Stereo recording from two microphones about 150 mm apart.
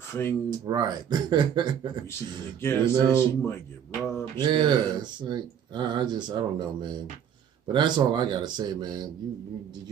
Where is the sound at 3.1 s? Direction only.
15° left (ahead or behind).